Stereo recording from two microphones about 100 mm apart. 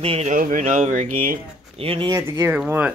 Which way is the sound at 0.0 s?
80° right.